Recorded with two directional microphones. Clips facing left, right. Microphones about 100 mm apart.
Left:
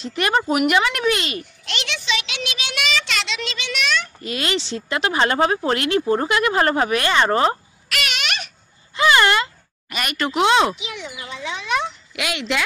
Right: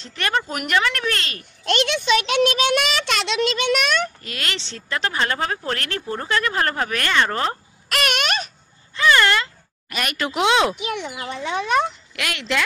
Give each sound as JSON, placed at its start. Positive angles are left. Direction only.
{"t": 0.0, "sound": "speech", "side_deg": 15}
{"t": 1.6, "sound": "a child's voice", "side_deg": -45}
{"t": 4.2, "sound": "speech", "side_deg": 15}
{"t": 7.9, "sound": "a sound", "side_deg": -45}
{"t": 8.9, "sound": "a sound", "side_deg": 15}
{"t": 9.8, "sound": "speech", "side_deg": 0}
{"t": 10.8, "sound": "a child's voice", "side_deg": -55}
{"t": 12.2, "sound": "a woman's voice", "side_deg": 5}